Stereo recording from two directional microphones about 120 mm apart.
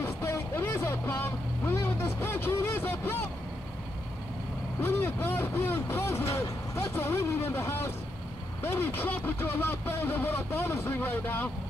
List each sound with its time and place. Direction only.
0.0 s vehicle: 20° left (ahead or behind)
4.8 s vehicle: 20° left (ahead or behind)
8.6 s speech: 20° left (ahead or behind)